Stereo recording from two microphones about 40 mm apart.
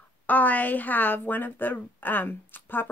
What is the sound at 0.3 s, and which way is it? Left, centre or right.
A woman's voice, left.